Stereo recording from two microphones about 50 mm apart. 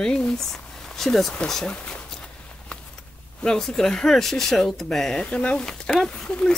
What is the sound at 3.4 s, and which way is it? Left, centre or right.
Speech, centre.